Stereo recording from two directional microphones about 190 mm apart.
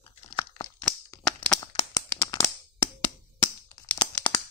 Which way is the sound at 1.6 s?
25° left (ahead or behind).